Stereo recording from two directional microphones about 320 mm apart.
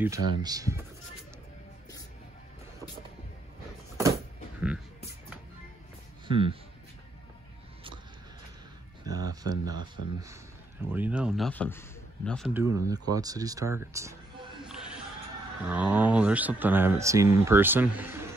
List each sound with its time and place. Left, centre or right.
0.0 s speech: centre
4.0 s a sound: centre
6.2 s speech: centre
9.0 s speech: centre
12.5 s speech: centre
14.6 s a sound: centre
15.6 s speech: centre